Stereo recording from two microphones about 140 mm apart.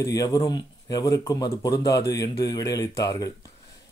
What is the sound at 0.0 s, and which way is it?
Speech, 25° left (ahead or behind).